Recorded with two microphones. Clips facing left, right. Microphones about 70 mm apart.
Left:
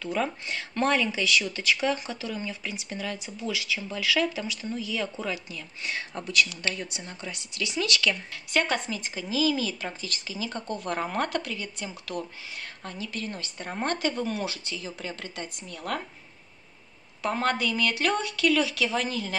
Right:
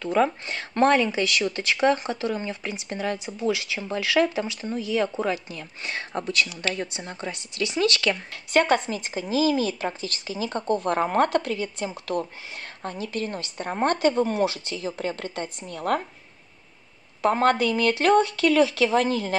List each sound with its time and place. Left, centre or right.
0.0 s speech: right
17.2 s speech: right